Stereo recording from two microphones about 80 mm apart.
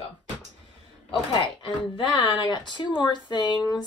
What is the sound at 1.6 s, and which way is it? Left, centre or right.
Speech, left.